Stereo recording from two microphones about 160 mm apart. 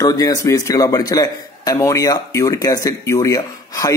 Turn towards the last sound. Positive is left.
turn(degrees=20)  # may be behind; listen again after turning